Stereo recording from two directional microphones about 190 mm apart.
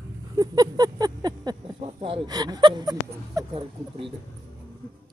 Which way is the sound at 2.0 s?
25° right (ahead or behind).